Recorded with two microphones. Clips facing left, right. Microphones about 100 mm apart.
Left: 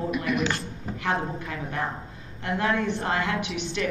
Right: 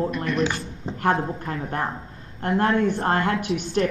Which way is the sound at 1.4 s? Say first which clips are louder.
Right 3 dB; 45° right (ahead or behind).